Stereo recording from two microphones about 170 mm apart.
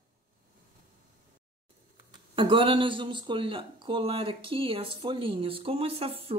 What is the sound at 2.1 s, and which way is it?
Speech, 30° right (ahead or behind).